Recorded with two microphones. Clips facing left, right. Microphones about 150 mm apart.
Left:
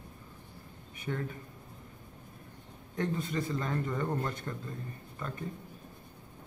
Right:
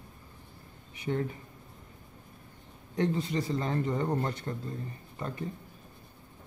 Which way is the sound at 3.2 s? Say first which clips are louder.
Right 3 dB; 50° left (ahead or behind).